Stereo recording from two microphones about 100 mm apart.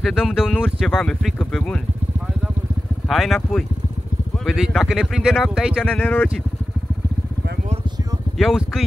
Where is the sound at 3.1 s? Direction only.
Centre (ahead or behind).